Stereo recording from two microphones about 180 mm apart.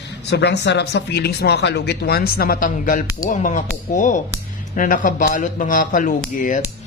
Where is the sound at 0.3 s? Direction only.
70° left (ahead or behind).